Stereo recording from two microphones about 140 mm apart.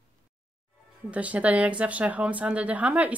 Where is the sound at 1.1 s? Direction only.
10° right (ahead or behind).